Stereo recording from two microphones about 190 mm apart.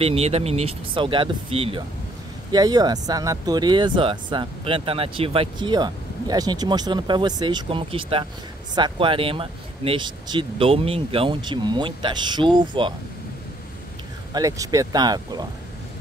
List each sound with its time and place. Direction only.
0.0 s speech: 30° right (ahead or behind)
14.3 s speech: 15° right (ahead or behind)